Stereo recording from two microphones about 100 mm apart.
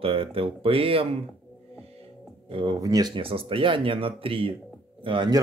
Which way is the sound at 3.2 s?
70° right (ahead or behind).